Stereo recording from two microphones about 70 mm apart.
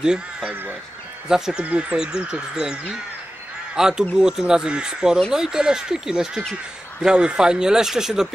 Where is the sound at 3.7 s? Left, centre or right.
Centre.